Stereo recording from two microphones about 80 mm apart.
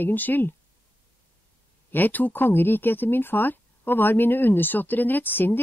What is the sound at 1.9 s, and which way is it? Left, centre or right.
Speech, left.